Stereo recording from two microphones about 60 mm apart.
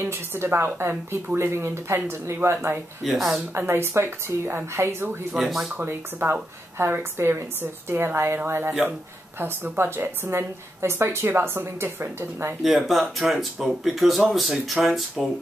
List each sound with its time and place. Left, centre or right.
0.0 s a woman's voice: right
3.0 s speech: centre
3.5 s a woman's voice: right
5.4 s speech: centre
5.9 s a woman's voice: right
8.6 s a woman's voice: right
12.6 s speech: centre